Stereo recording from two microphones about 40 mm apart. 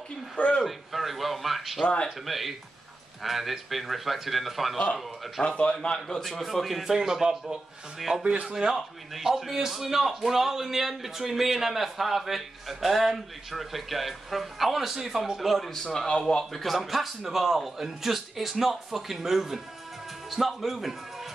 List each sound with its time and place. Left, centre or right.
0.4 s speech: left
0.7 s a man's voice: centre
5.4 s speech: left
5.9 s a man's voice: centre
6.4 s a man's voice: centre
8.2 s speech: right
8.5 s a man's voice: centre
15.7 s a man's voice: centre
16.5 s a man's voice: centre